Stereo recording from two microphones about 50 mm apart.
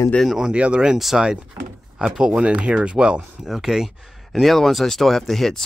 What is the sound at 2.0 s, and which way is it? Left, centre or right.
Speech, centre.